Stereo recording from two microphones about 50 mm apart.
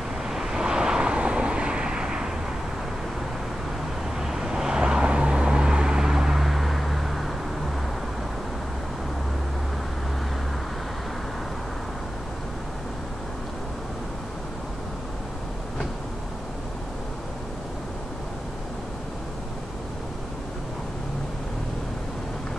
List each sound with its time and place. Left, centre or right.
0.3 s vehicle: centre
4.2 s vehicle: centre